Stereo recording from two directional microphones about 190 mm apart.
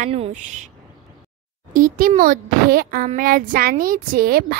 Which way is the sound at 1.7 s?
45° right (ahead or behind).